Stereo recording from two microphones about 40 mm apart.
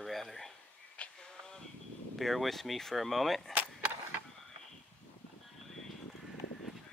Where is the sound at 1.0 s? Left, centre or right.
Left.